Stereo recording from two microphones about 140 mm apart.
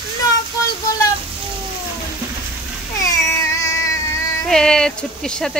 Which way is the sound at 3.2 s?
20° left (ahead or behind).